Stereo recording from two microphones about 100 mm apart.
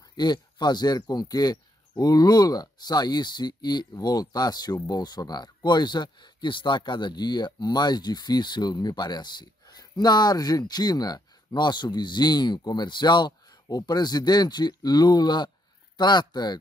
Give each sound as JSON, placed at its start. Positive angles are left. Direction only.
{"t": 0.2, "sound": "speech", "side_deg": 45}